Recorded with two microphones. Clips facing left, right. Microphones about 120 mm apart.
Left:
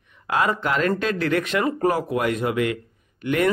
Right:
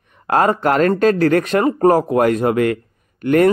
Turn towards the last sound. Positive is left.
turn(degrees=-45)  # may be behind; listen again after turning